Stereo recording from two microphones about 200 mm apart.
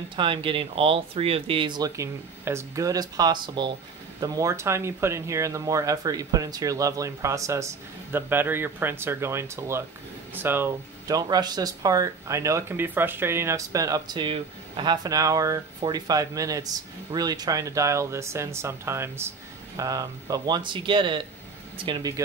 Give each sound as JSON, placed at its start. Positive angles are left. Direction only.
{"t": 0.1, "sound": "speech", "side_deg": -25}